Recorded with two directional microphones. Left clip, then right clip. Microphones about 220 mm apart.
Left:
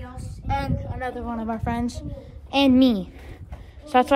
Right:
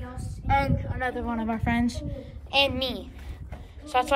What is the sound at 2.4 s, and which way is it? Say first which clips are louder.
Speech: left 3 dB; 80° left.